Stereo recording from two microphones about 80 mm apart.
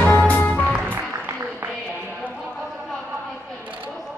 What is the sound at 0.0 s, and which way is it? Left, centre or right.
Music, centre.